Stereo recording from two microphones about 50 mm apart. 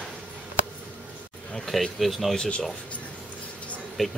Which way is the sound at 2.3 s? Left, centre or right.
Centre.